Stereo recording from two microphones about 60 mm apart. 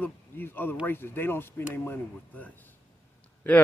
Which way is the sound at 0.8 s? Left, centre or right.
Left.